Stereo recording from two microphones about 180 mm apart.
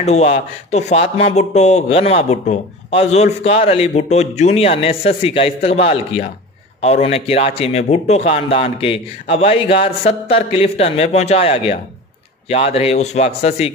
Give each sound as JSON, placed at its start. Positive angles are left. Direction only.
{"t": 0.0, "sound": "speech", "side_deg": 35}